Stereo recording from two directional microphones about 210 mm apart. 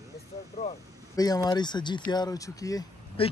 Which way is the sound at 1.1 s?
20° left (ahead or behind).